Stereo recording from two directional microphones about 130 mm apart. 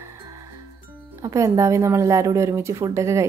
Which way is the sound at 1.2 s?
25° right (ahead or behind).